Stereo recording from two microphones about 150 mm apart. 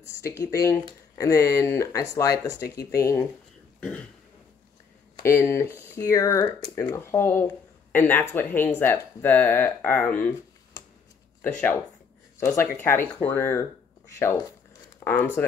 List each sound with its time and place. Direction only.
0.1 s speech: 20° left (ahead or behind)
3.8 s speech: 5° left (ahead or behind)
5.2 s speech: 20° left (ahead or behind)
11.4 s speech: 15° left (ahead or behind)
15.0 s a sound: 25° left (ahead or behind)
15.4 s speech: 10° left (ahead or behind)